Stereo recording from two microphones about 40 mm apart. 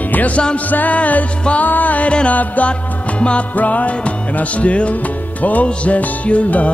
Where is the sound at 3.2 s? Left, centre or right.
Left.